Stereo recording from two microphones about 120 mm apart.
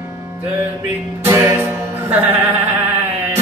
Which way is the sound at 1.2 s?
20° right (ahead or behind).